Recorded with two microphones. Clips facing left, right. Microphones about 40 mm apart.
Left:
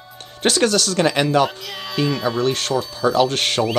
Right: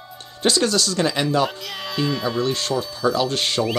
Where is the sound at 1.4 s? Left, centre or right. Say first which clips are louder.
Left 1 dB; centre.